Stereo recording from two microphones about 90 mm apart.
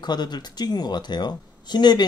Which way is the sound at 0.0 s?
50° left (ahead or behind).